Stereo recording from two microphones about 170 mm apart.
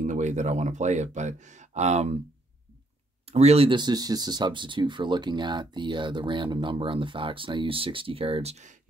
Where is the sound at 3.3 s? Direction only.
40° right (ahead or behind).